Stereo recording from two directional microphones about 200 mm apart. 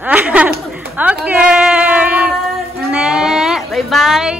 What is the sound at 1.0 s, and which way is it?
Female singing, 10° right (ahead or behind).